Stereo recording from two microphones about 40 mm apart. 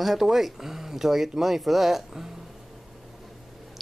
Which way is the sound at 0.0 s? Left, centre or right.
Centre.